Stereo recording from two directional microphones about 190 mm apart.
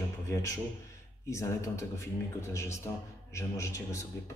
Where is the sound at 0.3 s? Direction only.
15° left (ahead or behind).